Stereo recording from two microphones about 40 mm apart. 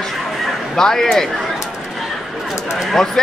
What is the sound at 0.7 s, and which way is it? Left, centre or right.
Speech, centre.